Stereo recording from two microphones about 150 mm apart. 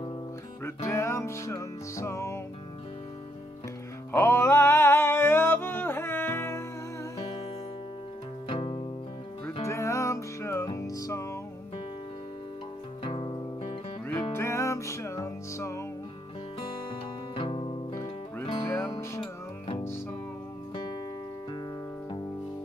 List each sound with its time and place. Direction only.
0.7 s music: 15° left (ahead or behind)
4.1 s music: 15° left (ahead or behind)
8.5 s music: 35° left (ahead or behind)
9.7 s music: 20° left (ahead or behind)
13.0 s music: 35° left (ahead or behind)
14.3 s music: 20° left (ahead or behind)
17.4 s music: 35° left (ahead or behind)
17.9 s music: 20° left (ahead or behind)